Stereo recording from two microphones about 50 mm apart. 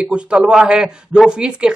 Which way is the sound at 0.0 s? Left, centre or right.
Right.